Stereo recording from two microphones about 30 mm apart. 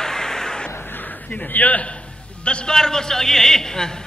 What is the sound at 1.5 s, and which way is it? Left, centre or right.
Speech, left.